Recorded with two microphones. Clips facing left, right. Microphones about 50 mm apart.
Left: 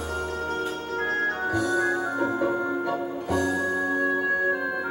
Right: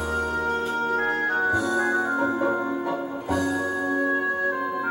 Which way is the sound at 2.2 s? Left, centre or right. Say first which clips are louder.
Right 1 dB; centre.